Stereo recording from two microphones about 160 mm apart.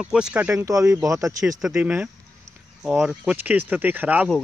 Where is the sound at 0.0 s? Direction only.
5° right (ahead or behind).